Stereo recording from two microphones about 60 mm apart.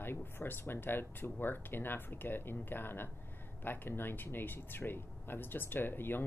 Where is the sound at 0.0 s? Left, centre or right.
Left.